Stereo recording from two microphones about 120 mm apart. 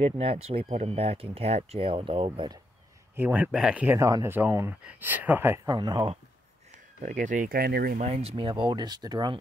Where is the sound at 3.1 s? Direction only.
15° right (ahead or behind).